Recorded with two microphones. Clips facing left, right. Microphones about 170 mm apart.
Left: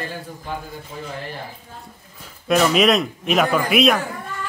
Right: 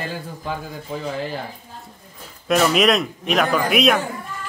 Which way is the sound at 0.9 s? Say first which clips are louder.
Right 6 dB; 90° right.